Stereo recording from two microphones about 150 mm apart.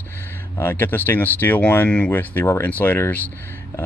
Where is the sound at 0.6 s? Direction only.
15° left (ahead or behind).